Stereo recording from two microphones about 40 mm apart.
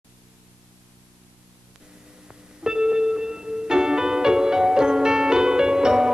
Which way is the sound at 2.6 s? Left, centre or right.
Centre.